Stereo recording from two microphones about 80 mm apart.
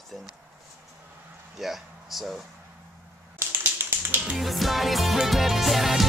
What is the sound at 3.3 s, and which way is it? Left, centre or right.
Tap, right.